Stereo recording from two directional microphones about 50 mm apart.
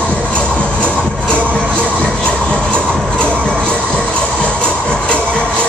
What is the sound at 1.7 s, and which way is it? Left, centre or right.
Music, right.